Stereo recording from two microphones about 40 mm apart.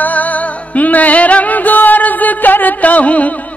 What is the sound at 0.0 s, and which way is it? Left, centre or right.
Music, left.